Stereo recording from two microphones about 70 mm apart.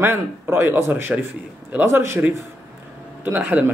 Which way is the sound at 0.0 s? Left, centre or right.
Right.